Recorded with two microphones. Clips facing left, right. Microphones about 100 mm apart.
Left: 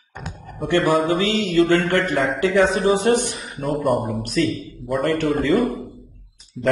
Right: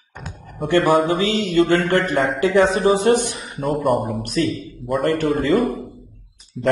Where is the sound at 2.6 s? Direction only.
35° right (ahead or behind).